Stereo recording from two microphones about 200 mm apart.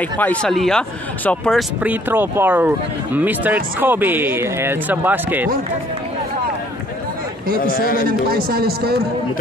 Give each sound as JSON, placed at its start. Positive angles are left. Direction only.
{"t": 0.0, "sound": "speech", "side_deg": 5}
{"t": 7.7, "sound": "speech", "side_deg": 45}
{"t": 8.1, "sound": "speech", "side_deg": -50}